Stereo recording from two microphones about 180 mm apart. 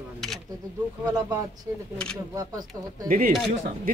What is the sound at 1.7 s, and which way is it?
Speech, 15° right (ahead or behind).